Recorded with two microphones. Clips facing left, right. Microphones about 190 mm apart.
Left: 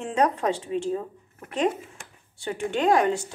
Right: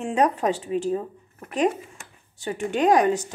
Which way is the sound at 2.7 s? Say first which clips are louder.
Right 2 dB; 15° right (ahead or behind).